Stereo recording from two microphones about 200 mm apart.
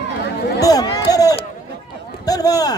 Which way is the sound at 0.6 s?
20° left (ahead or behind).